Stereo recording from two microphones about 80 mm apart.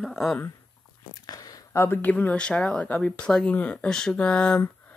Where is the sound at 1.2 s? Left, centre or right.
Left.